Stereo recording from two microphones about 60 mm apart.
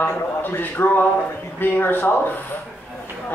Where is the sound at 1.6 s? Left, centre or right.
Left.